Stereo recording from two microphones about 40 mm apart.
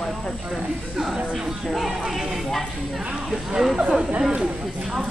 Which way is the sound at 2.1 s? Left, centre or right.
Centre.